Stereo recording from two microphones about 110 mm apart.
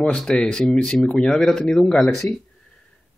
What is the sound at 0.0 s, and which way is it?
Speech, 10° left (ahead or behind).